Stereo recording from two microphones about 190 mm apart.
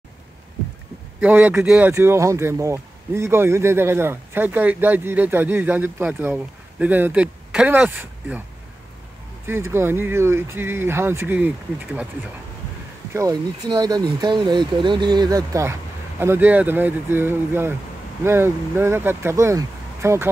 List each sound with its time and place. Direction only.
1.2 s speech: 10° right (ahead or behind)
9.5 s speech: 15° right (ahead or behind)
13.1 s speech: 20° right (ahead or behind)